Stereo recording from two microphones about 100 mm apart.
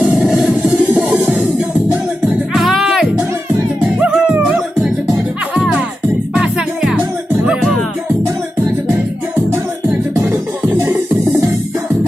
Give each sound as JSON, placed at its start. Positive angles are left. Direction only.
{"t": 0.7, "sound": "music", "side_deg": -15}
{"t": 2.5, "sound": "music", "side_deg": 0}
{"t": 6.3, "sound": "music", "side_deg": -5}
{"t": 10.1, "sound": "music", "side_deg": -25}